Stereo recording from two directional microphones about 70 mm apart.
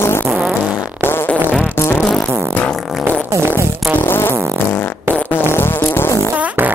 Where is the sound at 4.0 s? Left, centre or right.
Left.